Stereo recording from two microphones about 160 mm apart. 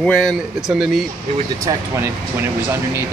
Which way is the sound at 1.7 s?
15° right (ahead or behind).